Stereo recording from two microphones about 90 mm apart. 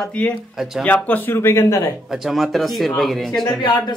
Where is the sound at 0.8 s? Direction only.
20° left (ahead or behind); by 1.9 s 35° left (ahead or behind).